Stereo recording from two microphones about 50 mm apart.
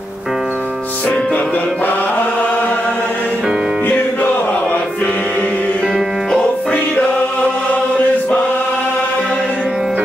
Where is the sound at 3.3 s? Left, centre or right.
Centre.